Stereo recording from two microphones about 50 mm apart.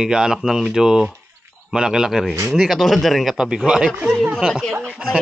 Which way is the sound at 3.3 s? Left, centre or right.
Centre.